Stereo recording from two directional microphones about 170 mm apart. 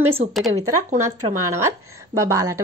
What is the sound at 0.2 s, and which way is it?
Speech, 40° right (ahead or behind).